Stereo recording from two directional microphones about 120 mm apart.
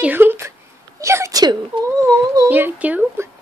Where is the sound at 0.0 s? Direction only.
15° right (ahead or behind); by 1.6 s 35° right (ahead or behind).